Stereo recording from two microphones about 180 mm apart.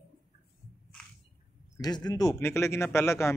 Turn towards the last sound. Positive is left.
turn(degrees=15)  # may be behind; listen again after turning